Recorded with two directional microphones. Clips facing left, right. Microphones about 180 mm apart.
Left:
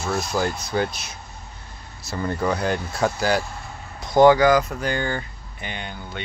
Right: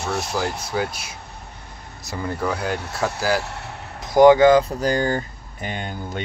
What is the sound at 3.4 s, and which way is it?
Vehicle, 70° right (ahead or behind).